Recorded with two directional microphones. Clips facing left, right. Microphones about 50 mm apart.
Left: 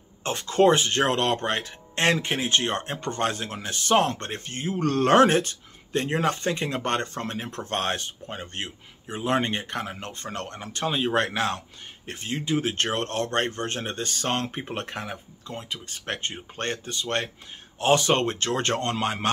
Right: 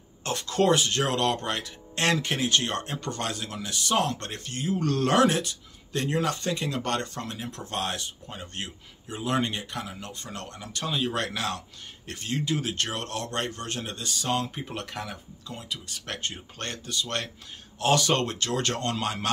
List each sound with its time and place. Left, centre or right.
0.2 s speech: left